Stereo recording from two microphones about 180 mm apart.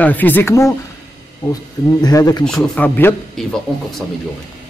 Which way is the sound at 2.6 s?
10° left (ahead or behind).